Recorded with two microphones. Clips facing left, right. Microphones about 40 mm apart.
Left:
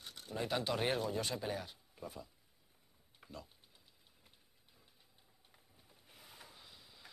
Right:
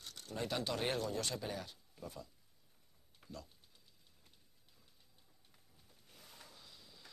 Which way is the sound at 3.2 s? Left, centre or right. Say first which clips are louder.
Even; centre.